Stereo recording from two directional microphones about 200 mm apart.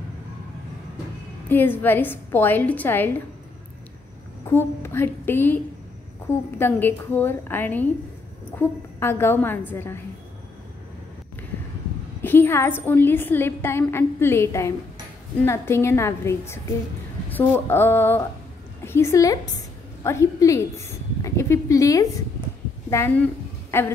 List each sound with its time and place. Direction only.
1.5 s a woman's voice: 10° left (ahead or behind)
4.5 s a woman's voice: 10° left (ahead or behind)
6.6 s a woman's voice: 10° left (ahead or behind)
12.2 s a woman's voice: 10° left (ahead or behind)